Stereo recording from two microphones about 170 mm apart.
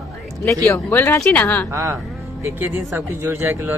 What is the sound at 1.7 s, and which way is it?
Speech, 15° right (ahead or behind).